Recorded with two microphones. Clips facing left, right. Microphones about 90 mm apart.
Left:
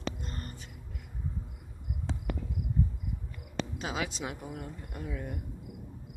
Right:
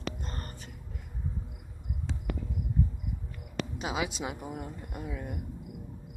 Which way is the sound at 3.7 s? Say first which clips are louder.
Right 5 dB; 10° right (ahead or behind).